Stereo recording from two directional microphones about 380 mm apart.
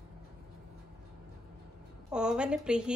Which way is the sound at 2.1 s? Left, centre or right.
Centre.